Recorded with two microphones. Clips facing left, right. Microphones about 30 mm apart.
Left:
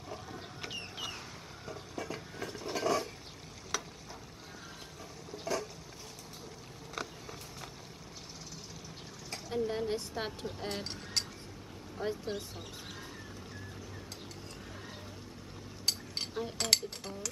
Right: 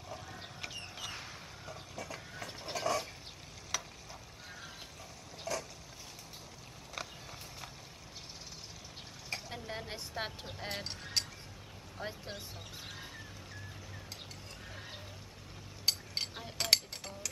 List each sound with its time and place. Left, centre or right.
0.1 s vehicle: centre
0.7 s chicken: centre
1.7 s a sound: centre
3.7 s frying: centre
5.4 s a sound: centre
7.0 s a sound: centre
9.3 s speech: centre
15.8 s cutlery: centre
16.3 s speech: centre